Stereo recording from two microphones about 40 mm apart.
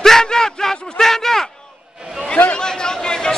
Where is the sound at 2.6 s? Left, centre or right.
Centre.